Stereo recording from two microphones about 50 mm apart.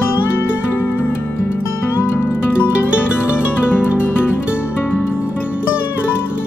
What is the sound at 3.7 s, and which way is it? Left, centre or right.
Music, left.